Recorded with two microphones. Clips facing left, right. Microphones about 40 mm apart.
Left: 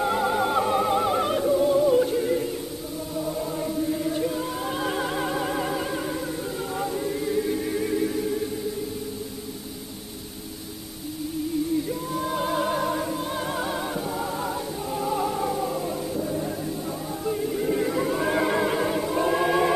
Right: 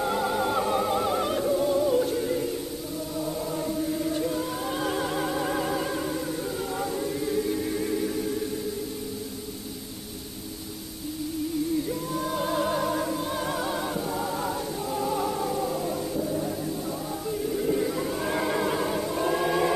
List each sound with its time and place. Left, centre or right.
0.0 s music: centre
6.8 s choir: centre
11.9 s music: centre
17.6 s choir: centre